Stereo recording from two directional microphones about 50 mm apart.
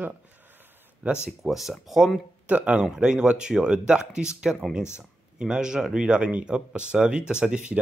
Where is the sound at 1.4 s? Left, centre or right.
Centre.